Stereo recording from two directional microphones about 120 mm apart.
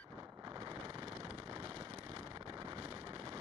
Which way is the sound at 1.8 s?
35° right (ahead or behind).